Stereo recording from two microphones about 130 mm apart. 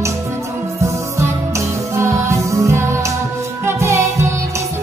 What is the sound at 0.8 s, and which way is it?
Music, 25° right (ahead or behind).